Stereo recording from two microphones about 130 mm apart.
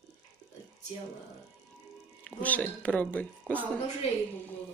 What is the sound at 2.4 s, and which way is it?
A man's voice, 10° left (ahead or behind).